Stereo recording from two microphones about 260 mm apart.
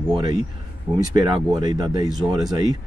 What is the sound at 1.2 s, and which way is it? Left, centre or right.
Speech, centre.